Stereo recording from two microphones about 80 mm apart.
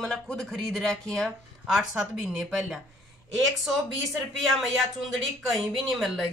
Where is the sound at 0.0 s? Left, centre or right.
Centre.